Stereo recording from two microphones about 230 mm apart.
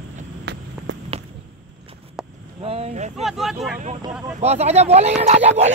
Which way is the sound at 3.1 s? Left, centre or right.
Centre.